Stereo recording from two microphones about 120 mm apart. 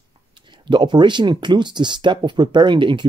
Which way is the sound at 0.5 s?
40° right (ahead or behind).